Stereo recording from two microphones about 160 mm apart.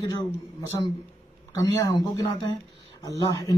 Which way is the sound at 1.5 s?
20° left (ahead or behind).